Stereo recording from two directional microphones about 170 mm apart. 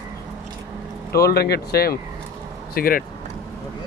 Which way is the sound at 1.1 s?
65° left (ahead or behind).